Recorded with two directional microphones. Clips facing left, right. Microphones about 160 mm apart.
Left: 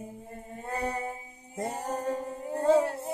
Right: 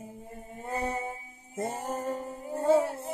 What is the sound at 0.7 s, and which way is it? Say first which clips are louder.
Music: even; 10° right (ahead or behind).